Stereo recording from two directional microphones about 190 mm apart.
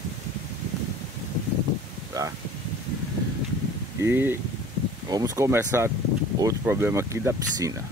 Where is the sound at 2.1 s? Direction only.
20° right (ahead or behind).